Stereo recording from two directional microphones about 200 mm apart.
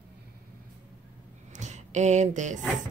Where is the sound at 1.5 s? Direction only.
35° right (ahead or behind).